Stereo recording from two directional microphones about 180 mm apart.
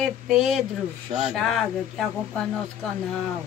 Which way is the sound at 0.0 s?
Centre (ahead or behind).